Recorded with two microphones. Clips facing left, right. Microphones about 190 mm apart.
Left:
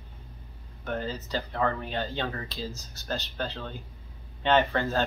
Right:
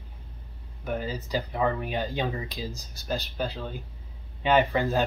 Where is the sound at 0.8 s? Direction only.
10° right (ahead or behind).